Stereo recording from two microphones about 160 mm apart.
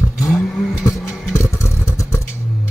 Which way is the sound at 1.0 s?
Centre (ahead or behind).